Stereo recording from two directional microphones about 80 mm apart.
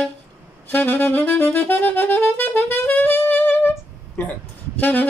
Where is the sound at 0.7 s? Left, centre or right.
Left.